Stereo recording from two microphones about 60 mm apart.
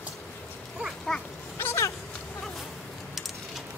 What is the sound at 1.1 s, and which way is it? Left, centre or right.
Goat, centre.